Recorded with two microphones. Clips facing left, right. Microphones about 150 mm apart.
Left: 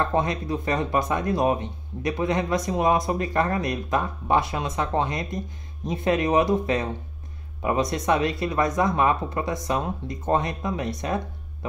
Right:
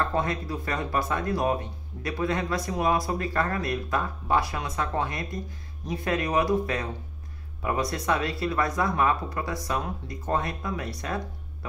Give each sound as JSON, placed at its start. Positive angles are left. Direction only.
{"t": 0.0, "sound": "speech", "side_deg": 20}